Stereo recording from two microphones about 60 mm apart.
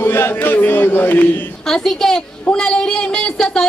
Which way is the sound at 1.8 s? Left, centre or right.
Centre.